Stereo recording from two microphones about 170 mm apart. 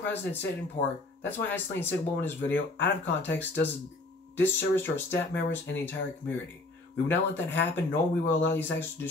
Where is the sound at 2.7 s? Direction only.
90° left.